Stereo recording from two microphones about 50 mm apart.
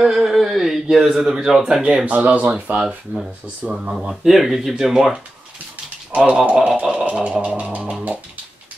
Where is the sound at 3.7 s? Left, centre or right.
Centre.